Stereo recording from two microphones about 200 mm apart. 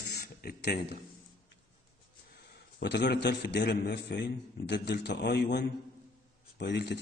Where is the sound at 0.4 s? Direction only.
50° left (ahead or behind).